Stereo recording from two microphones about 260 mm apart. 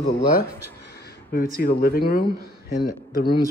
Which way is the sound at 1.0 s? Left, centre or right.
Left.